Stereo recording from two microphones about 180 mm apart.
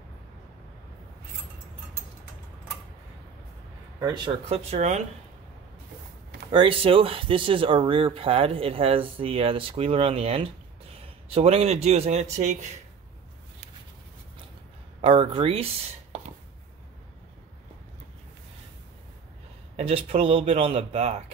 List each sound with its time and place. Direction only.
4.0 s speech: 30° right (ahead or behind)
6.5 s speech: 30° right (ahead or behind)
15.0 s speech: 30° right (ahead or behind)
19.8 s speech: 30° right (ahead or behind)